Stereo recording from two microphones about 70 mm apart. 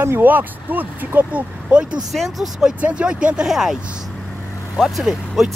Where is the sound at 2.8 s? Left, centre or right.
Centre.